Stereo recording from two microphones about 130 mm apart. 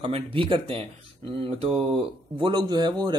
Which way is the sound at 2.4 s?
35° right (ahead or behind).